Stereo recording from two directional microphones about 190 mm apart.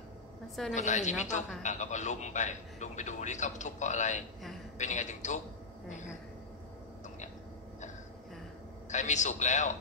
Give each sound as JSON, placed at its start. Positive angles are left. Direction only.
{"t": 0.7, "sound": "a man's voice", "side_deg": 40}
{"t": 8.9, "sound": "a man's voice", "side_deg": 40}